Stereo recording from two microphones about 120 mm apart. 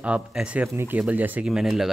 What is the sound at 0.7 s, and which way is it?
Speech, 20° right (ahead or behind).